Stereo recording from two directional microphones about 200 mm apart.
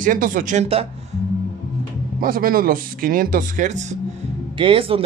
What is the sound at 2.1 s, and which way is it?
Speech, 45° right (ahead or behind).